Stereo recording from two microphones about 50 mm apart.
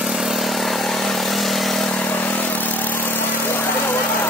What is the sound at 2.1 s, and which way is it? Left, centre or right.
Vehicle, left.